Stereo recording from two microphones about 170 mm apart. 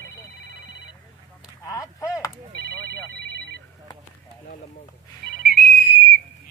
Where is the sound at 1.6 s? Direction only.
20° left (ahead or behind).